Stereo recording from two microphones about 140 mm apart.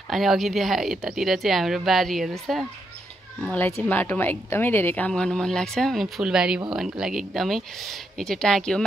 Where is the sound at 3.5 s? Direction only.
15° left (ahead or behind).